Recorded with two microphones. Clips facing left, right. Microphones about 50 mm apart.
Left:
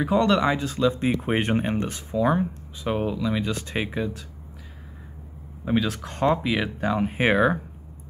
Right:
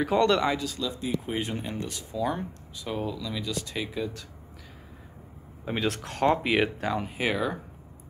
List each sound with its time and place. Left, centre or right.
0.2 s a man's voice: centre
0.6 s speech: left
5.6 s a man's voice: centre
6.3 s speech: right
6.8 s speech: left
7.1 s speech: left